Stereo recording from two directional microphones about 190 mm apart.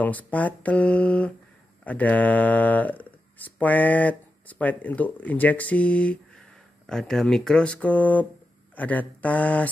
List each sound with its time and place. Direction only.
0.0 s speech: 10° left (ahead or behind)